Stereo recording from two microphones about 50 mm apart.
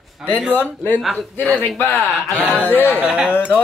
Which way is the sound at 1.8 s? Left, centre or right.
Left.